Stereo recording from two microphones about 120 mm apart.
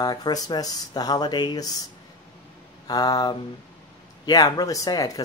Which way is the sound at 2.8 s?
35° left (ahead or behind).